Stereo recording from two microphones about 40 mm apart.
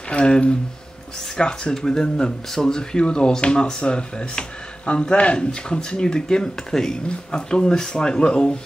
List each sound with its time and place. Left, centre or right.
0.1 s speech: left